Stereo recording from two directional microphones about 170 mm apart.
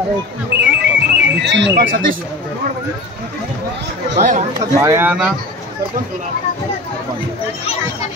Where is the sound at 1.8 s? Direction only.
55° right (ahead or behind).